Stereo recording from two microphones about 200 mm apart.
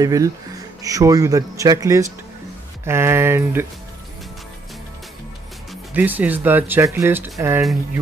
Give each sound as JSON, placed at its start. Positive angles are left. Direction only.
{"t": 0.0, "sound": "speech", "side_deg": -15}
{"t": 5.7, "sound": "speech", "side_deg": -10}